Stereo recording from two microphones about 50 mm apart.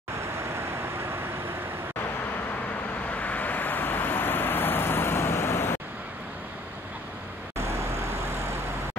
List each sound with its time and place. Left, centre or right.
0.6 s vehicle: right
3.1 s vehicle: left